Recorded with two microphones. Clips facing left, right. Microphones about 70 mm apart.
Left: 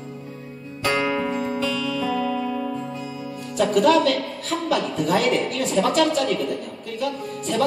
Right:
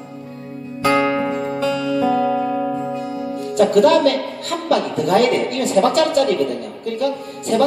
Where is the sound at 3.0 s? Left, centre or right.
Right.